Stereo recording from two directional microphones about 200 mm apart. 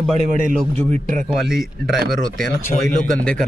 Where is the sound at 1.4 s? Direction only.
Centre (ahead or behind).